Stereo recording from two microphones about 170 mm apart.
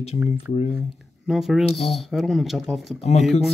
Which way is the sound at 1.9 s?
Centre (ahead or behind).